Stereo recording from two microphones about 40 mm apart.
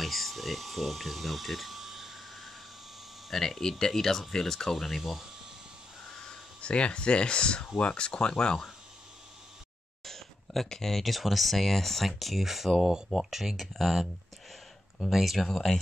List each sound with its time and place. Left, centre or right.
0.0 s a sound: centre
3.3 s speech: centre
6.0 s a sound: centre
6.6 s speech: left
10.0 s speech: centre
15.0 s speech: centre
15.3 s speech: centre